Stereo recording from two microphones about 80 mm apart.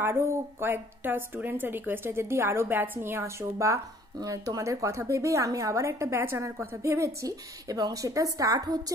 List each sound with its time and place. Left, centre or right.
0.0 s a woman's voice: right